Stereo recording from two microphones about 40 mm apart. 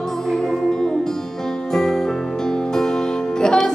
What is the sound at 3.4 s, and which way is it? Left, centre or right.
Music, centre.